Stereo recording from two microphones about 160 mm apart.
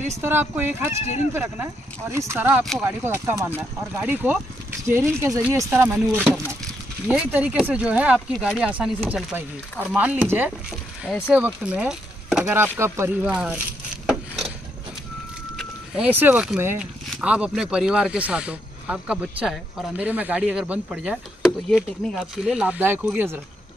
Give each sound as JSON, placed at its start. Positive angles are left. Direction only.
{"t": 0.1, "sound": "speech", "side_deg": -15}
{"t": 14.0, "sound": "wood", "side_deg": 0}
{"t": 15.5, "sound": "speech", "side_deg": -10}